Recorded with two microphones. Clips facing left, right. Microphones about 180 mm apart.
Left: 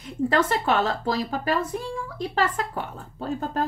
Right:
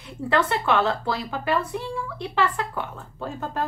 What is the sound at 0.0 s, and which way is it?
A woman's voice, 45° left (ahead or behind).